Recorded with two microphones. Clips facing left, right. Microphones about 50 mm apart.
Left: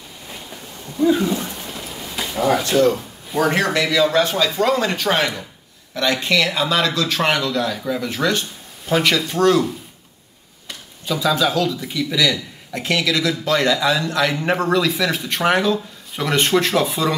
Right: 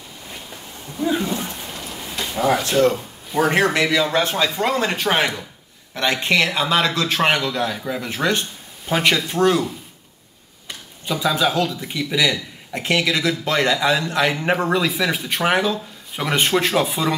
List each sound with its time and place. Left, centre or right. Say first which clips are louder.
0.9 s speech: left 4 dB; centre
3.5 s a man's voice: right 2 dB; right
10.7 s a sound: left 1 dB; centre
11.8 s speech: left 1 dB; centre